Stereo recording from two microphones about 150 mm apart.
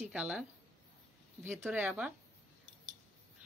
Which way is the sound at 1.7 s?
10° right (ahead or behind).